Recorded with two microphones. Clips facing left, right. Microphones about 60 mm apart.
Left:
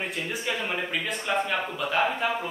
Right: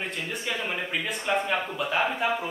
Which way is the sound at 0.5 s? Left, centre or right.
Centre.